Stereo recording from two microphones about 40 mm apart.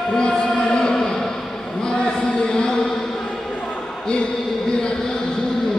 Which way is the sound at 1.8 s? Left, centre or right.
Left.